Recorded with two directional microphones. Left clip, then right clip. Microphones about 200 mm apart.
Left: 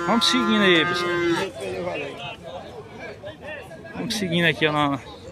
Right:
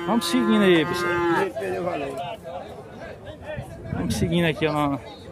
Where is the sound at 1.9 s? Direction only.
50° right (ahead or behind).